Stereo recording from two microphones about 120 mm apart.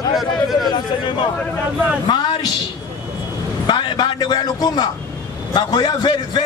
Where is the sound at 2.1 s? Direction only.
40° left (ahead or behind).